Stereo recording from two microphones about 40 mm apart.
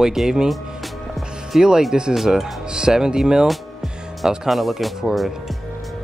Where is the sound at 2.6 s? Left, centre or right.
Centre.